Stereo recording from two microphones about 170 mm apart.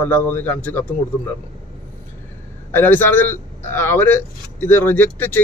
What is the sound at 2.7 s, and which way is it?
Speech, 10° left (ahead or behind).